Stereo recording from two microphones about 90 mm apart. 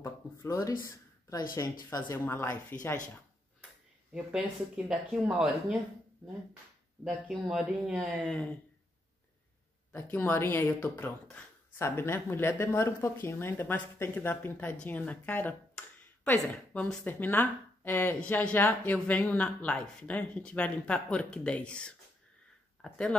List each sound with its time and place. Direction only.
0.5 s speech: 40° left (ahead or behind)
2.0 s speech: 25° left (ahead or behind)
4.1 s speech: 10° right (ahead or behind)
7.1 s speech: 5° right (ahead or behind)
8.3 s speech: 10° left (ahead or behind)
9.9 s speech: 25° left (ahead or behind)
11.4 s a sound: 15° left (ahead or behind)
11.9 s speech: 30° left (ahead or behind); by 23.0 s 5° left (ahead or behind)